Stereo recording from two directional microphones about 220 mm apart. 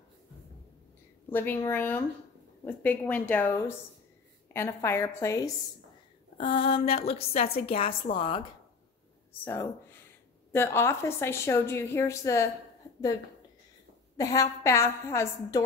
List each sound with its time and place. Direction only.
1.3 s a woman's voice: 10° left (ahead or behind)
6.3 s a woman's voice: 25° left (ahead or behind)
9.3 s a woman's voice: 10° left (ahead or behind)
14.1 s a woman's voice: 15° left (ahead or behind)